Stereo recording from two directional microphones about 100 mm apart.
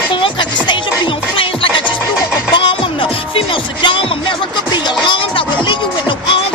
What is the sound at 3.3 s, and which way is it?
Music, 60° left (ahead or behind).